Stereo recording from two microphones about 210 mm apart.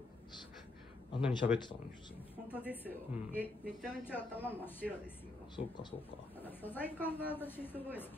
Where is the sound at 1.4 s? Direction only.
45° left (ahead or behind).